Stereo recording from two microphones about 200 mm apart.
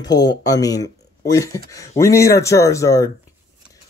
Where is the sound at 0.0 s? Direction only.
20° left (ahead or behind).